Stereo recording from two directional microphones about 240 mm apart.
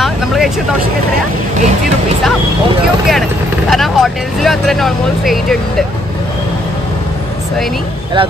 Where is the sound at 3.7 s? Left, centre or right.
Centre.